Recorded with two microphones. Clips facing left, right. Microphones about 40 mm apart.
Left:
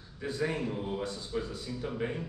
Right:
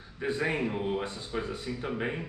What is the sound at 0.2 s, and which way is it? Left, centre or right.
A man's voice, right.